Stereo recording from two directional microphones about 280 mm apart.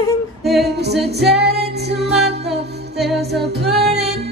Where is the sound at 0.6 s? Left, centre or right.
Right.